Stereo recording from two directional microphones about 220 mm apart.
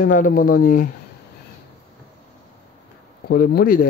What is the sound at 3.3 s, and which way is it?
Speech, 40° left (ahead or behind).